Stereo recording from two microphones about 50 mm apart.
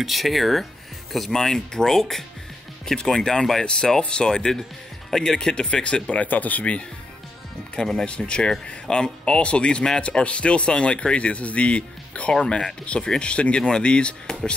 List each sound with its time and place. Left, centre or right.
0.0 s speech: centre; by 6.8 s left
7.7 s speech: centre